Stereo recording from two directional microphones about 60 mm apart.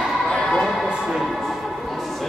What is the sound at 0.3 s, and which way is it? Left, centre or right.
Music, centre.